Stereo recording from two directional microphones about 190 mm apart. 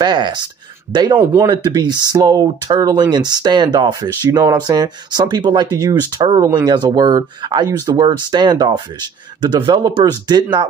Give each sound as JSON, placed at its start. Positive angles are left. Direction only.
{"t": 0.0, "sound": "speech", "side_deg": -25}
{"t": 1.1, "sound": "speech", "side_deg": -10}